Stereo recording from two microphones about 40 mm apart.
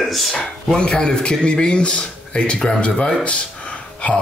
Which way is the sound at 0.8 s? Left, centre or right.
Left.